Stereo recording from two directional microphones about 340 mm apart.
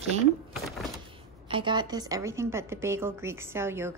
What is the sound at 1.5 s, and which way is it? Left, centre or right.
A woman's voice, centre.